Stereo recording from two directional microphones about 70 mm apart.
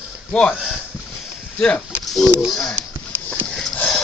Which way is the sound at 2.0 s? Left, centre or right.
Centre.